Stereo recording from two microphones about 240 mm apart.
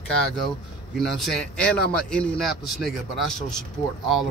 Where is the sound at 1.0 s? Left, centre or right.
Centre.